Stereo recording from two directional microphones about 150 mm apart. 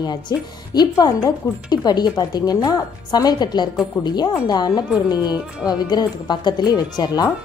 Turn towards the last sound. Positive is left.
turn(degrees=25)  # may be behind; listen again after turning